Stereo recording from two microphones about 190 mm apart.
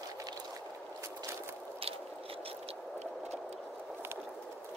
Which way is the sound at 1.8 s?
30° right (ahead or behind).